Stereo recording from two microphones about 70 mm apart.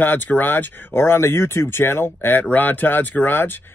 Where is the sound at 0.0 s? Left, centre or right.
Left.